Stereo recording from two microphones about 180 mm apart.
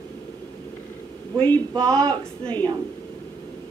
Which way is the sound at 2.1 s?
10° left (ahead or behind).